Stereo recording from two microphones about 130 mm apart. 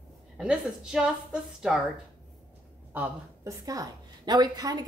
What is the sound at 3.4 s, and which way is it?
A woman's voice, 25° right (ahead or behind).